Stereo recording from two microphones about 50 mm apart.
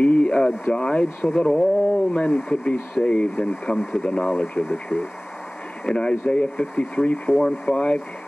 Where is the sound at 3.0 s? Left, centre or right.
Left.